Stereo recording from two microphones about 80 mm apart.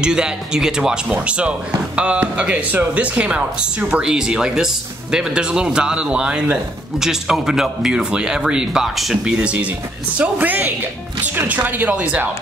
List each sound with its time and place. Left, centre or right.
0.0 s speech: centre
9.2 s speech: centre